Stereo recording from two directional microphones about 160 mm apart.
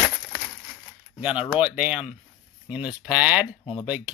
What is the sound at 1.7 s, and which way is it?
Speech, 5° right (ahead or behind).